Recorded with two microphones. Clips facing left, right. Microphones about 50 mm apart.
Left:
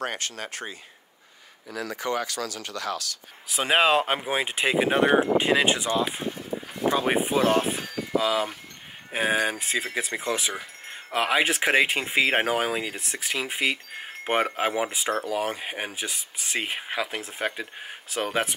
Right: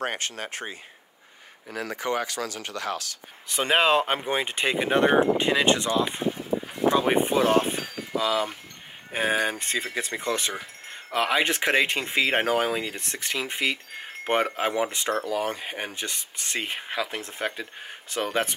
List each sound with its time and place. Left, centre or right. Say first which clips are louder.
0.0 s speech: right 1 dB; right
3.4 s speech: even; centre